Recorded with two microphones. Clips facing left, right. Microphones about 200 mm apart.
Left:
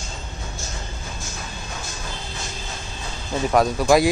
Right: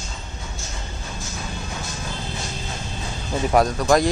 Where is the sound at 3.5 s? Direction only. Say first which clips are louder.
Left 1 dB; centre (ahead or behind).